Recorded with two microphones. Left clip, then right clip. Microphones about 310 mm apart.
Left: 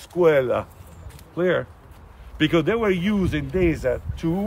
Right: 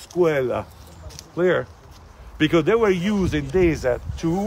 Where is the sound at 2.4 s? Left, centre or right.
Centre.